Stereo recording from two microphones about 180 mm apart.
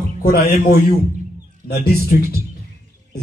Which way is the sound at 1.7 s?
60° left (ahead or behind).